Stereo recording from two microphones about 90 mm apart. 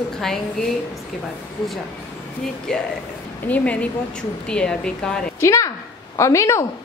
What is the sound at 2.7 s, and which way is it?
Speech, 10° left (ahead or behind).